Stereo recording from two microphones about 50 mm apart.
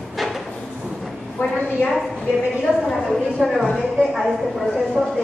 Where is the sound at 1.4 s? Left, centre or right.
Left.